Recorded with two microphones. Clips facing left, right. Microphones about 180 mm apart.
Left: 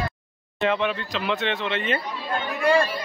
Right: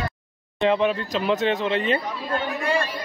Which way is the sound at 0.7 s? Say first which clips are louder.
Right 4 dB; 35° right (ahead or behind).